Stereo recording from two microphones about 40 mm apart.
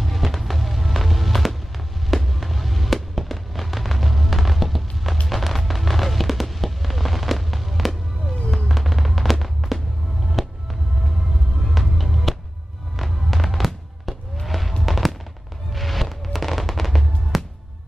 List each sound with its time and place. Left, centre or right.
0.0 s music: centre
2.0 s fireworks: centre
10.2 s music: centre
13.3 s fireworks: centre